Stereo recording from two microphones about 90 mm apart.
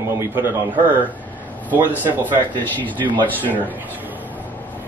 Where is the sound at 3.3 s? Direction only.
20° left (ahead or behind).